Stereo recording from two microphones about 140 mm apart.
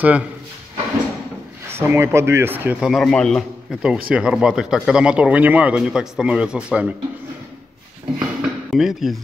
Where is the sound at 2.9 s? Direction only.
Centre (ahead or behind).